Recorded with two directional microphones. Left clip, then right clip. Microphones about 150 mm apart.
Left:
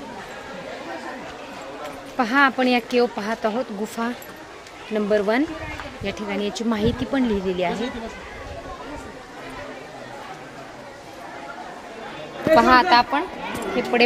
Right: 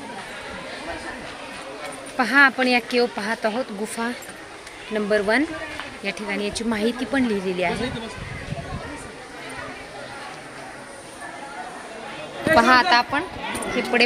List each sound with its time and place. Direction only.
2.1 s speech: 10° left (ahead or behind)
12.5 s a woman's voice: 5° left (ahead or behind)